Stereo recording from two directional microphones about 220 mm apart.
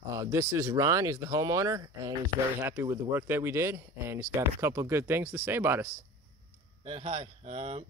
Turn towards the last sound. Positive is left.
turn(degrees=-25)  # may be behind; listen again after turning